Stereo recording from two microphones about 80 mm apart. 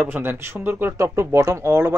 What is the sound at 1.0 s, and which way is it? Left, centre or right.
Speech, right.